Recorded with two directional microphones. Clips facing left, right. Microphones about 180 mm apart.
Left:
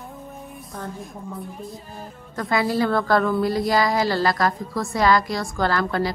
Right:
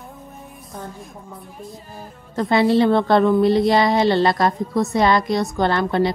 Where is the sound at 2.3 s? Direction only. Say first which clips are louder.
Right 6 dB; 25° right (ahead or behind).